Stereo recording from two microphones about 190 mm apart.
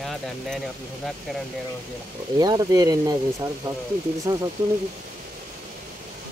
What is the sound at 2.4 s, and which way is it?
Speech, 20° right (ahead or behind).